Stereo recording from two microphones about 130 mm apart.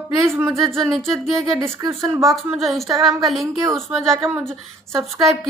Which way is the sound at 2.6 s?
Centre (ahead or behind).